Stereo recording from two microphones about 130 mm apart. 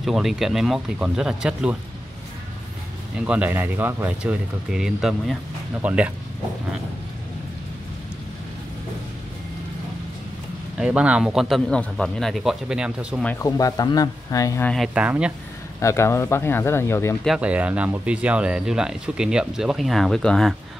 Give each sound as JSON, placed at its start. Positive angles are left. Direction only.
{"t": 0.0, "sound": "speech", "side_deg": 0}
{"t": 3.3, "sound": "speech", "side_deg": -15}
{"t": 10.8, "sound": "speech", "side_deg": -10}
{"t": 13.4, "sound": "speech", "side_deg": 25}
{"t": 14.6, "sound": "speech", "side_deg": 5}
{"t": 15.0, "sound": "speech", "side_deg": -10}
{"t": 15.8, "sound": "speech", "side_deg": 20}
{"t": 17.4, "sound": "speech", "side_deg": -10}